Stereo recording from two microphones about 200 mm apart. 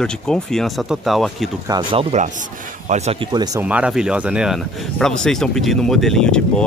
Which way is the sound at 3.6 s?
5° right (ahead or behind).